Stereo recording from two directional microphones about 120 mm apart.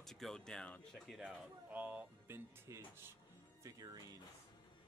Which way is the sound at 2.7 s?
25° right (ahead or behind).